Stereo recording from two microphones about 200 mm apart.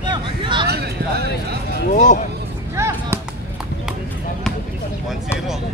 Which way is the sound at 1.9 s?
40° left (ahead or behind).